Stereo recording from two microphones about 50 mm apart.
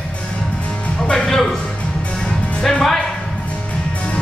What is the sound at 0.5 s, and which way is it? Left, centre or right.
Music, left.